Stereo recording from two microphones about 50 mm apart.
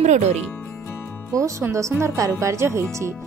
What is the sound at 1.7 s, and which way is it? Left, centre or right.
A woman's voice, right.